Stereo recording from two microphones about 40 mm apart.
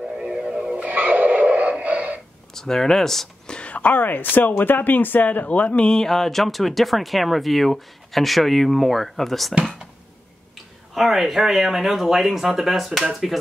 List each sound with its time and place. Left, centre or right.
0.2 s music: right
0.7 s music: right
2.5 s speech: centre
3.4 s a sound: left
3.7 s speech: left
5.9 s speech: centre
11.0 s speech: centre